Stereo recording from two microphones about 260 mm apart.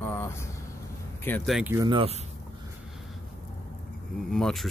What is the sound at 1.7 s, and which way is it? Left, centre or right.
Speech, centre.